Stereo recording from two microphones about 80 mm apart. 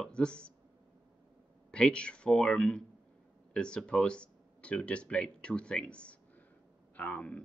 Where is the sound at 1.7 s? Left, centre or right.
Centre.